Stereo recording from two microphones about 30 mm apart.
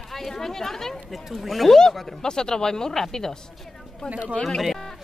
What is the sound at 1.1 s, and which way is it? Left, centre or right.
Speech, centre.